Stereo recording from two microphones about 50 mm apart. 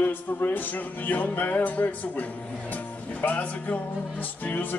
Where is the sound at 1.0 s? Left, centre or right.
Left.